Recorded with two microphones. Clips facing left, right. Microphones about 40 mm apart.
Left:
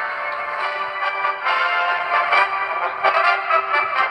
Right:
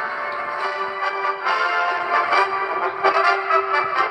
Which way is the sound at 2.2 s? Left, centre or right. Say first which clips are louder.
Left 1 dB; left.